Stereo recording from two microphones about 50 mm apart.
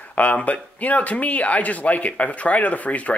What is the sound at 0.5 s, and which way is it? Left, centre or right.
Speech, left.